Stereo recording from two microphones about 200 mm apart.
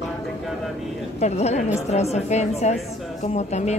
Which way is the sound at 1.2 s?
35° left (ahead or behind).